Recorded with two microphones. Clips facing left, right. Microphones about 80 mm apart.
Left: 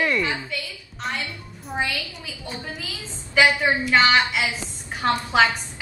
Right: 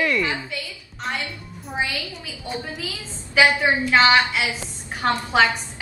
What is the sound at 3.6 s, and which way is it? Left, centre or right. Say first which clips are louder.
Speech: right 1 dB; centre.